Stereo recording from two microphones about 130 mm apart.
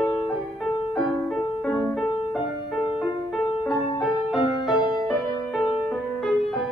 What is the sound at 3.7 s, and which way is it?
Music, centre (ahead or behind).